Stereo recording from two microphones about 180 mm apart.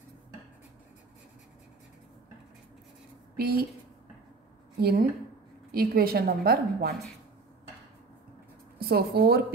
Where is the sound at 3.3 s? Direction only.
60° right (ahead or behind).